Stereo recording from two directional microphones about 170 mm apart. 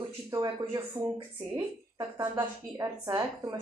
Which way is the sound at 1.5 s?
15° right (ahead or behind).